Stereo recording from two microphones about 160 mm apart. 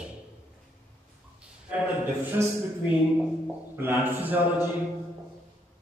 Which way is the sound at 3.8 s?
10° right (ahead or behind).